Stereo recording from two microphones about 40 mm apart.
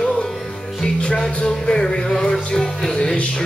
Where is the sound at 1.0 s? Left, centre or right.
Left.